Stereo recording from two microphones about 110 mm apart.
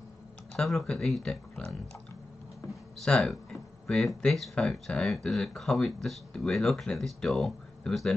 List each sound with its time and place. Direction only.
0.6 s speech: 5° left (ahead or behind)